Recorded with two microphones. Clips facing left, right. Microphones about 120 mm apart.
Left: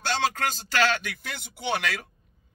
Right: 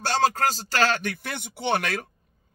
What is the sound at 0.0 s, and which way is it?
A man's voice, 45° right (ahead or behind).